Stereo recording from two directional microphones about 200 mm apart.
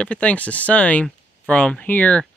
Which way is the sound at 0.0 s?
5° left (ahead or behind).